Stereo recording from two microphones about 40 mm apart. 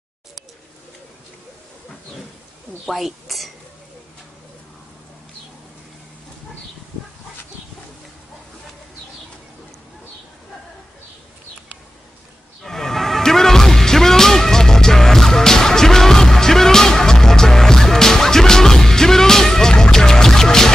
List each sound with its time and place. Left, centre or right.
2.9 s speech: centre
12.6 s music: centre